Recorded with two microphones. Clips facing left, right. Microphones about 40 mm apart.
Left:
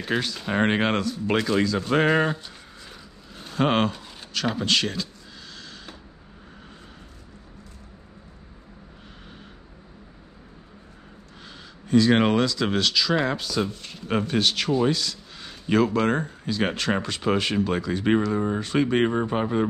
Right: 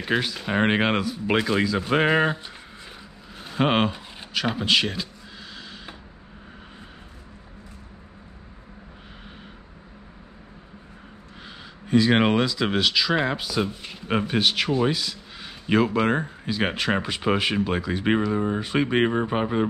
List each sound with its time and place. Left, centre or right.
0.0 s speech: centre
5.6 s creak: centre
11.4 s speech: centre